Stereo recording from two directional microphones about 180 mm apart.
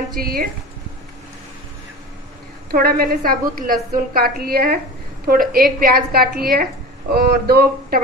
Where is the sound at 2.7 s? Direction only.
55° right (ahead or behind).